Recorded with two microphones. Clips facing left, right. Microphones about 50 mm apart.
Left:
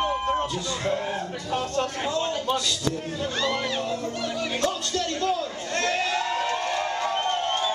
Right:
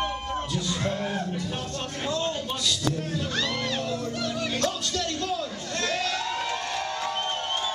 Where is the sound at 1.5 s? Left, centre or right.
Left.